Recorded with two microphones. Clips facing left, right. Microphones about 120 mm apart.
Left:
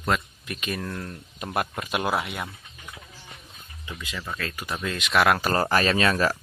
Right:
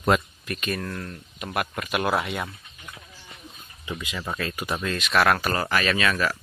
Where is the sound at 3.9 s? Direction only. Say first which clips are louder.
Right 3 dB; 20° right (ahead or behind).